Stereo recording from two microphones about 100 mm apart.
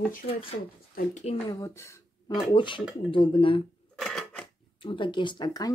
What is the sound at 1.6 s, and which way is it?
Speech, 30° left (ahead or behind).